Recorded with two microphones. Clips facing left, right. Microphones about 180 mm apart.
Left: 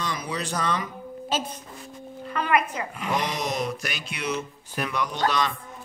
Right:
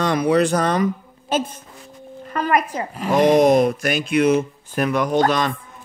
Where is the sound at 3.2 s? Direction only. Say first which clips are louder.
Right 16 dB; 55° right (ahead or behind).